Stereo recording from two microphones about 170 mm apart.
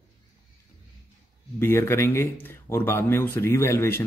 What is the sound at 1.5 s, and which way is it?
Speech, 15° left (ahead or behind).